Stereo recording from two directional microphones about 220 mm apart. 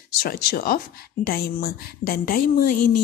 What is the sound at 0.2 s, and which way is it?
A woman's voice, 45° left (ahead or behind).